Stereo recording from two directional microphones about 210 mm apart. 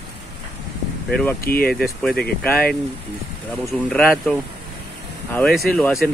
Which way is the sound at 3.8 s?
5° left (ahead or behind).